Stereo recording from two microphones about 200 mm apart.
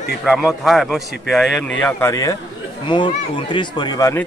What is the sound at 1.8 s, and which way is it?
Speech, 15° left (ahead or behind).